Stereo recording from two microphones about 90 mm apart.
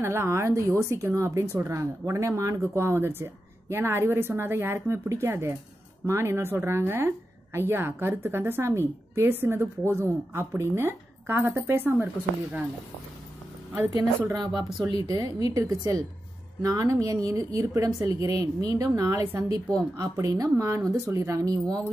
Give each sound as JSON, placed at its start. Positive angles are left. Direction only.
{"t": 0.0, "sound": "a woman's voice", "side_deg": -30}
{"t": 14.3, "sound": "a woman's voice", "side_deg": -50}